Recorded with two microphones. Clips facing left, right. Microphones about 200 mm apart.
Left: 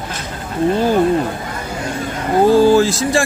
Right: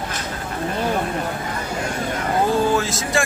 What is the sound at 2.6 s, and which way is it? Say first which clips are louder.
Speech: left 9 dB; 30° left (ahead or behind).